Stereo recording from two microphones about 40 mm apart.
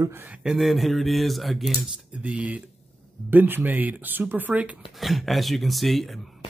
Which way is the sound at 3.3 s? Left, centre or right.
Right.